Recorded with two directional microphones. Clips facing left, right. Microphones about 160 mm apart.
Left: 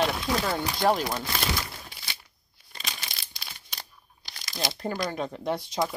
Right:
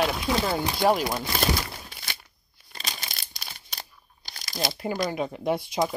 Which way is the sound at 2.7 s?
40° right (ahead or behind).